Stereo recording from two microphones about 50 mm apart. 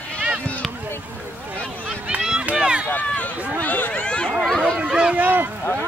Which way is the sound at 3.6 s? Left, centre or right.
Left.